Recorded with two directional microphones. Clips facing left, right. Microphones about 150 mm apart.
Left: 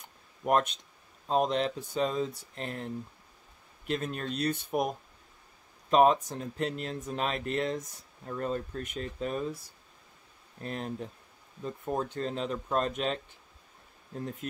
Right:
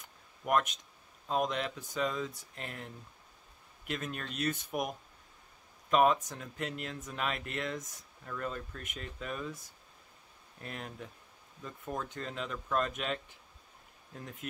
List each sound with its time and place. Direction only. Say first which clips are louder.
0.5 s speech: left 3 dB; 30° left (ahead or behind)
10.6 s speech: left 7 dB; 35° left (ahead or behind)